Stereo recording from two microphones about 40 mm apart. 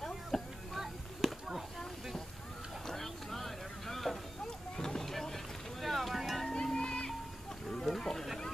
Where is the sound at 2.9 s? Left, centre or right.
Centre.